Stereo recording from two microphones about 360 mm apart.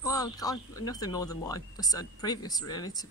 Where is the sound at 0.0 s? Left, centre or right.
Centre.